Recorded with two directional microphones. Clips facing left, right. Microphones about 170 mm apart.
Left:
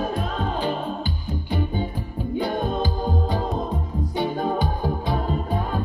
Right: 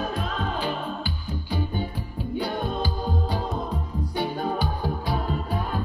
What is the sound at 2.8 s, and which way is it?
Music, 20° left (ahead or behind).